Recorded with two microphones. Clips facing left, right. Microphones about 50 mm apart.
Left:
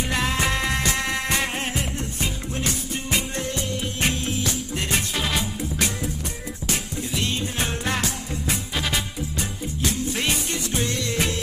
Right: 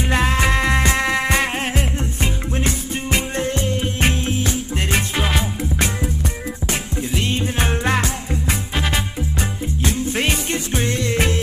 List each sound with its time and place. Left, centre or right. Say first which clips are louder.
0.1 s music: right 6 dB; right